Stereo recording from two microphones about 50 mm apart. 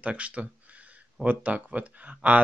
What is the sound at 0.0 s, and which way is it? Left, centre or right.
Speech, right.